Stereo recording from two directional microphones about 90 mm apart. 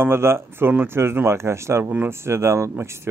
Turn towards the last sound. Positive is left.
turn(degrees=-30)  # may be behind; listen again after turning